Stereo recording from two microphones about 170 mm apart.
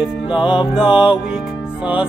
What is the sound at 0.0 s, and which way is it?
Music, 30° left (ahead or behind).